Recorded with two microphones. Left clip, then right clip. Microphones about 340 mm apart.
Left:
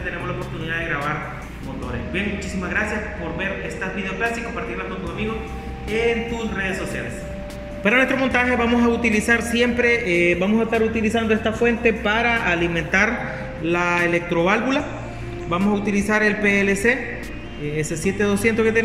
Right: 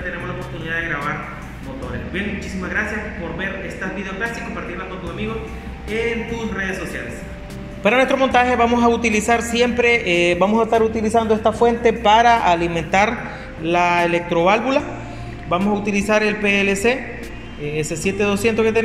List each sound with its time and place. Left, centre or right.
0.7 s speech: centre
5.9 s speech: centre
7.8 s a man's voice: centre
11.1 s a woman's voice: right
11.6 s a man's voice: centre